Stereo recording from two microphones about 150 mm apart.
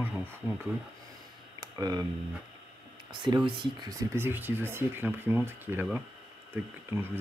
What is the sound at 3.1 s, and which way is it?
Speech, 30° right (ahead or behind).